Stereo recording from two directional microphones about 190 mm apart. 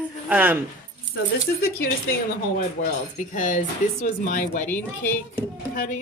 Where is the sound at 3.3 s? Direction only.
45° left (ahead or behind).